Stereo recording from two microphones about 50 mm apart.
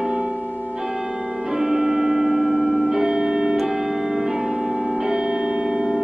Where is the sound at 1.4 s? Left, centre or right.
Centre.